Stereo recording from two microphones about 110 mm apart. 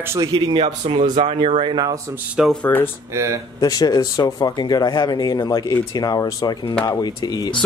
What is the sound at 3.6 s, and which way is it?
Speech, 35° left (ahead or behind).